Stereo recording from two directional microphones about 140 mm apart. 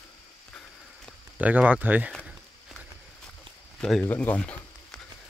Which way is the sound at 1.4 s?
10° right (ahead or behind).